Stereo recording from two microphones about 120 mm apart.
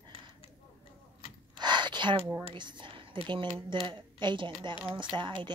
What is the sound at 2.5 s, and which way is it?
Speech, 40° right (ahead or behind).